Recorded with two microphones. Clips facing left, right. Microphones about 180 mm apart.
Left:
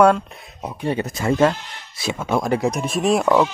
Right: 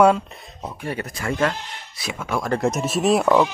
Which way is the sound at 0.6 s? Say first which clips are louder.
Left 5 dB; 20° left (ahead or behind).